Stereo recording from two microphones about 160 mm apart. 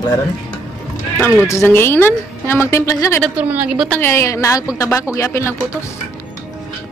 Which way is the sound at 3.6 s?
5° right (ahead or behind).